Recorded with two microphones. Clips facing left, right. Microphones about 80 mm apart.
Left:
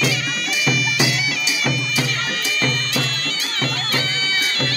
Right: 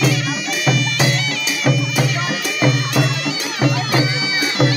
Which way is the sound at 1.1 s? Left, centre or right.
Centre.